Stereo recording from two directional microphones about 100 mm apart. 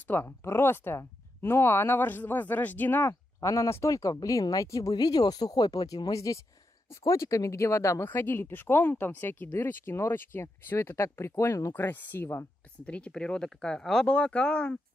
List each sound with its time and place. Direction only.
0.1 s speech: 25° left (ahead or behind)
11.7 s speech: 20° left (ahead or behind)
12.8 s speech: 10° left (ahead or behind)